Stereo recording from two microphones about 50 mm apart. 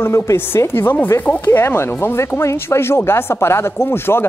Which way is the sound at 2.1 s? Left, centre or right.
Left.